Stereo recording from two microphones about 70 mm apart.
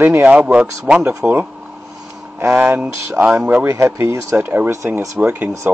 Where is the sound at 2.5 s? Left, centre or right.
Centre.